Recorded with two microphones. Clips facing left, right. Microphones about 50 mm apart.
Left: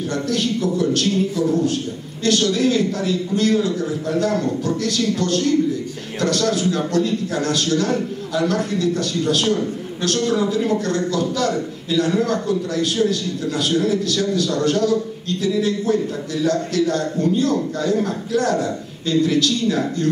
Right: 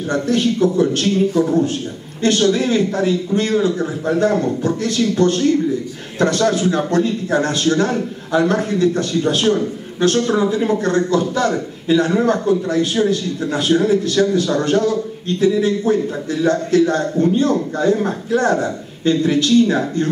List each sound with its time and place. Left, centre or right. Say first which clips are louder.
0.1 s a man's voice: right 6 dB; right